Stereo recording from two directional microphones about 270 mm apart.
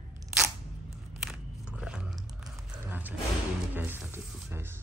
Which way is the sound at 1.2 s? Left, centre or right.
Centre.